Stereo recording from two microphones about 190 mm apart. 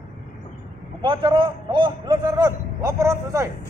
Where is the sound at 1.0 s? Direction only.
25° right (ahead or behind).